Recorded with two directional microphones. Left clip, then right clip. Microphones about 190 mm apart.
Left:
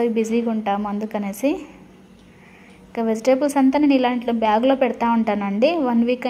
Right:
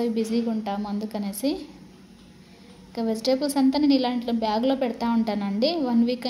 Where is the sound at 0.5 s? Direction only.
15° left (ahead or behind).